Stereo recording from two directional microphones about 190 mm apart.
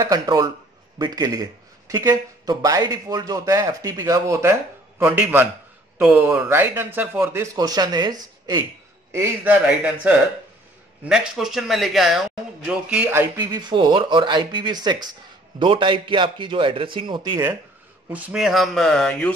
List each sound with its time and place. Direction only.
0.0 s a man's voice: 20° right (ahead or behind)
9.1 s a man's voice: 10° right (ahead or behind)
11.1 s speech: centre (ahead or behind); by 17.4 s 25° right (ahead or behind)
18.1 s a man's voice: 5° right (ahead or behind)